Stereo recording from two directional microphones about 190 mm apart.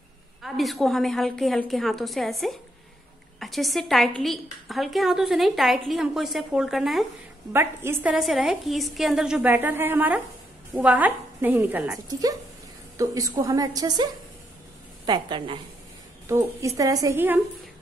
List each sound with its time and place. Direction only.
0.4 s a woman's voice: centre (ahead or behind)
7.5 s a woman's voice: 10° right (ahead or behind)